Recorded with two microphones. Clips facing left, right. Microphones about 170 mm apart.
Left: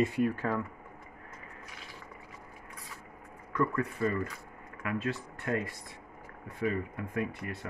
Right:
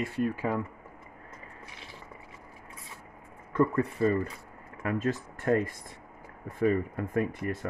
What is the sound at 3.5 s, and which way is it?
Speech, 30° right (ahead or behind).